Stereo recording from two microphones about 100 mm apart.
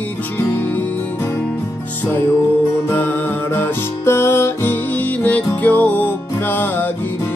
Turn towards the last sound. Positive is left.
turn(degrees=20)  # may be behind; listen again after turning